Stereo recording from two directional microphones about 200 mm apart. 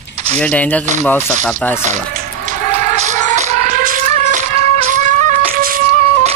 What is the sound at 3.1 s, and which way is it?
Music, 35° right (ahead or behind).